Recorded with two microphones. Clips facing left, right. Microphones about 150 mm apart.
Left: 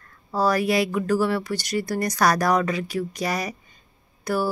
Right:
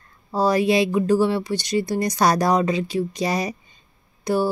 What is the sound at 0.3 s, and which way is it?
Speech, 20° right (ahead or behind).